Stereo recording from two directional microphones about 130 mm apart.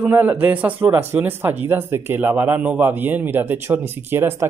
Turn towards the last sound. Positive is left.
turn(degrees=-15)  # may be behind; listen again after turning